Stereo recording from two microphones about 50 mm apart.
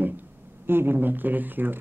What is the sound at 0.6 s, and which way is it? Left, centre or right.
Speech, right.